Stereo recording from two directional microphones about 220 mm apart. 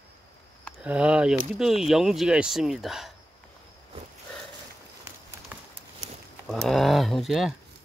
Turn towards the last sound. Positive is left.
turn(degrees=0)  # may be behind; listen again after turning